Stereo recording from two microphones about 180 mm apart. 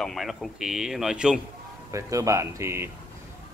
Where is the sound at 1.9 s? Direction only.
15° right (ahead or behind).